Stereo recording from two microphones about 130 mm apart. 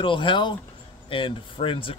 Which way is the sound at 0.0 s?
40° left (ahead or behind).